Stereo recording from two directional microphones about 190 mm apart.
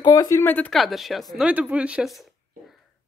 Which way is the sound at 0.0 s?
20° left (ahead or behind).